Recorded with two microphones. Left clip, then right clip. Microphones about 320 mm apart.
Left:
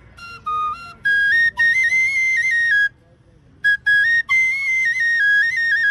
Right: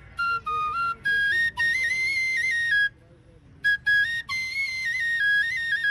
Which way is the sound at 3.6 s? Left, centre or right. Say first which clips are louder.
Left 6 dB; centre.